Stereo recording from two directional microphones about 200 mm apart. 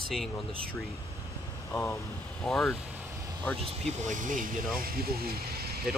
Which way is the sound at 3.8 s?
40° right (ahead or behind).